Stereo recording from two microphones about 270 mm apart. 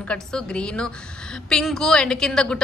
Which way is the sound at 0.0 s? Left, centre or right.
Centre.